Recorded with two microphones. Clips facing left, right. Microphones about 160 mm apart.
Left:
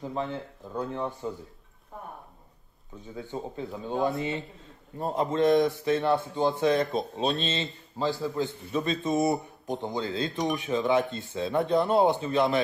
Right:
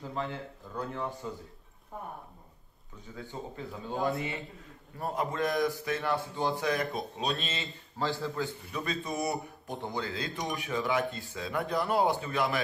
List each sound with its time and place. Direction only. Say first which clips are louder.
0.0 s a man's voice: left 4 dB; 20° left (ahead or behind)
3.2 s a man's voice: left 5 dB; 20° left (ahead or behind)